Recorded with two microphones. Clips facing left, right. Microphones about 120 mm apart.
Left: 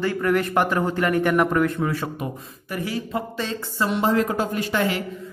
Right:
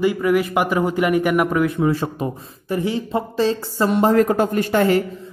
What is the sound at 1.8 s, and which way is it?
Speech, 25° right (ahead or behind).